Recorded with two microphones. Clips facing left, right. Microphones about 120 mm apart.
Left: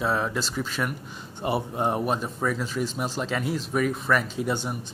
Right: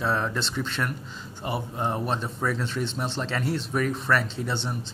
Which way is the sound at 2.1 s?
5° left (ahead or behind).